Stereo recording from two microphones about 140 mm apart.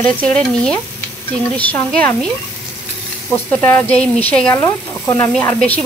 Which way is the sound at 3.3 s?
15° left (ahead or behind).